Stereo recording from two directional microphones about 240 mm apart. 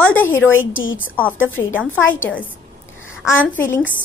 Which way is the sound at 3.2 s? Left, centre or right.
Centre.